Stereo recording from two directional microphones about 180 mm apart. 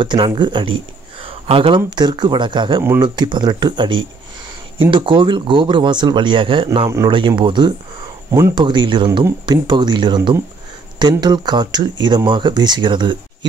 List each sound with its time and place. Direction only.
0.0 s speech: 25° right (ahead or behind)
1.2 s a sound: 30° right (ahead or behind)
2.0 s speech: 25° right (ahead or behind)
8.3 s speech: 15° right (ahead or behind)